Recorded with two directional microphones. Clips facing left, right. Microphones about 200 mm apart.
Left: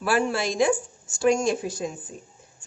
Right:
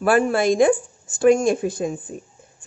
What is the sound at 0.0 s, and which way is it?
Speech, 55° right (ahead or behind).